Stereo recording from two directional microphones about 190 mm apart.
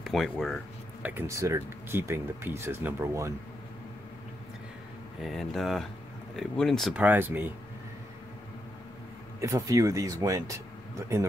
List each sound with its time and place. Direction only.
0.0 s speech: centre (ahead or behind)
1.0 s speech: 15° right (ahead or behind)
5.2 s speech: centre (ahead or behind)
9.4 s speech: 15° right (ahead or behind)